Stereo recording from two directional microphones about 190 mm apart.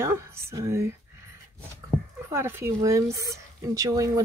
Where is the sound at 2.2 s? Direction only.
15° right (ahead or behind).